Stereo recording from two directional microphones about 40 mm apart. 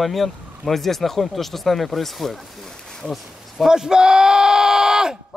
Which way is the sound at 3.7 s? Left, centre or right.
Centre.